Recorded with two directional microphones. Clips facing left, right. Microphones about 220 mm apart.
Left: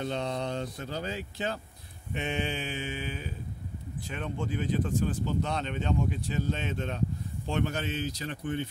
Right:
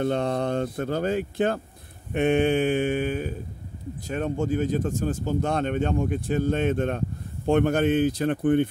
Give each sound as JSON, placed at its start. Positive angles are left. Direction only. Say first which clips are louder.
{"t": 0.0, "sound": "speech", "louder": "right 8 dB", "side_deg": -55}
{"t": 2.1, "sound": "a sound", "louder": "right 12 dB", "side_deg": -55}
{"t": 4.1, "sound": "speech", "louder": "right 9 dB", "side_deg": -45}